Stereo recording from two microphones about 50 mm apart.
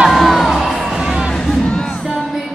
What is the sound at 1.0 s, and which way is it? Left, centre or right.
Music, centre.